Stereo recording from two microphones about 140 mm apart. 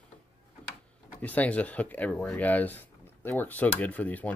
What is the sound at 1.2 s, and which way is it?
Speech, 10° left (ahead or behind).